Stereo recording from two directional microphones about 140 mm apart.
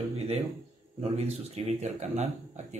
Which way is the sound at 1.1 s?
50° right (ahead or behind).